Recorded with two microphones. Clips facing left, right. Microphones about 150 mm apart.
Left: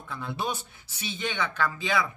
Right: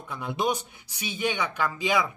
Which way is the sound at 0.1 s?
15° right (ahead or behind).